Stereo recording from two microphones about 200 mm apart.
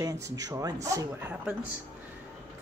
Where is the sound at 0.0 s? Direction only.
15° right (ahead or behind).